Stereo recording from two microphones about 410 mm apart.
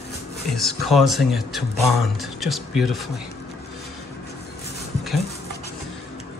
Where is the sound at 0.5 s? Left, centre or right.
Centre.